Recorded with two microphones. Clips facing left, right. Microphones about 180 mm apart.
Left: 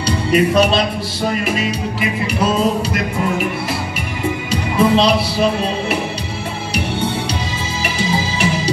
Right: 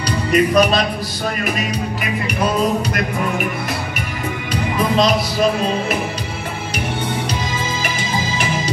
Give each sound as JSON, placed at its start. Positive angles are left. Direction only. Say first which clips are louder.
{"t": 0.3, "sound": "speech", "louder": "even", "side_deg": 25}
{"t": 4.5, "sound": "music", "louder": "left 4 dB", "side_deg": 30}
{"t": 7.8, "sound": "music", "louder": "left 3 dB", "side_deg": 30}